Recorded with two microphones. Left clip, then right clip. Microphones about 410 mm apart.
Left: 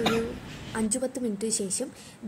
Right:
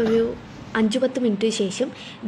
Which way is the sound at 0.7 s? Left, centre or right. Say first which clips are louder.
Right 9 dB; left.